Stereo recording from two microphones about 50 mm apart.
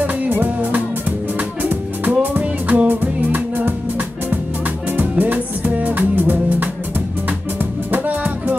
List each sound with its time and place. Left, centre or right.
0.4 s music: right
4.9 s music: right
7.9 s music: right